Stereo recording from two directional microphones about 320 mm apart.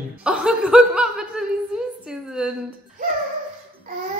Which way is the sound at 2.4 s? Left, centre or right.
Centre.